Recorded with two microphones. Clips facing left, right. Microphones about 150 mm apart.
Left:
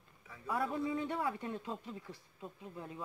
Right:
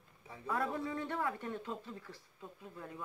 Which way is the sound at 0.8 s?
15° left (ahead or behind).